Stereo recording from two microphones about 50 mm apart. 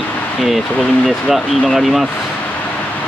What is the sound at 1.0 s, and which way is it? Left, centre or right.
Speech, centre.